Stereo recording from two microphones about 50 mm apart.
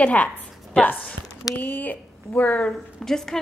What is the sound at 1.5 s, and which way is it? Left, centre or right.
Speech, left.